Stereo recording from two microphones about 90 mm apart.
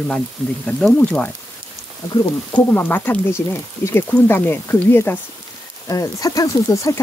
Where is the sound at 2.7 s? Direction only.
20° left (ahead or behind).